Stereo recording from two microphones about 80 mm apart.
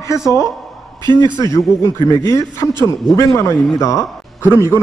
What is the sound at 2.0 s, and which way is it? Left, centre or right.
A man's voice, left.